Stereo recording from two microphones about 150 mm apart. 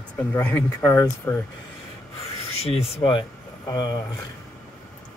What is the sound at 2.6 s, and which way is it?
Speech, 40° left (ahead or behind).